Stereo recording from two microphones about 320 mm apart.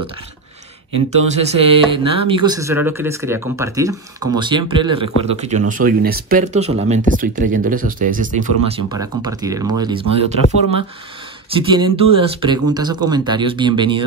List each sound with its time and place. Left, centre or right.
0.9 s speech: centre
11.7 s speech: centre